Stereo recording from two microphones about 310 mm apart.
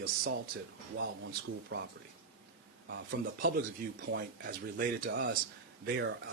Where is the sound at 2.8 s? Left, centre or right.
Right.